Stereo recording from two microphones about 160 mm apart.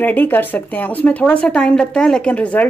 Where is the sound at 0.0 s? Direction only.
10° left (ahead or behind).